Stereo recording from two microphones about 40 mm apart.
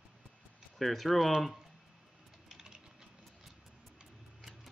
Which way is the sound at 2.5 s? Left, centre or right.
Centre.